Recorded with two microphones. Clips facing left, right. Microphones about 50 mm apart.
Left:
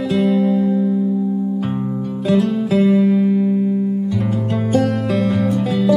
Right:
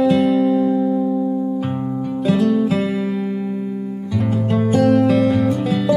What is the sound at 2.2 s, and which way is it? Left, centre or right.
Music, centre.